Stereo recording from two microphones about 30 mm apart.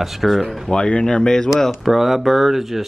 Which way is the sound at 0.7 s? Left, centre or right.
Left.